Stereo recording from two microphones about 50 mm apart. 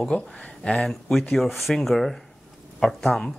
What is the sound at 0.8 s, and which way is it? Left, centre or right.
Speech, centre.